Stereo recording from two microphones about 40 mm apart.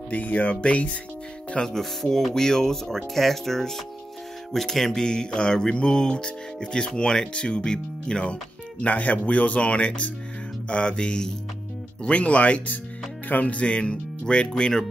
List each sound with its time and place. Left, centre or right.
0.1 s speech: left
1.6 s speech: centre
4.5 s mantra: centre
8.8 s speech: left
10.7 s mantra: left
12.0 s speech: left
13.3 s mantra: left
14.6 s speech: centre